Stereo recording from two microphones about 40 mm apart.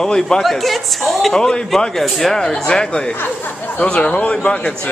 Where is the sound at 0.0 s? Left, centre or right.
Centre.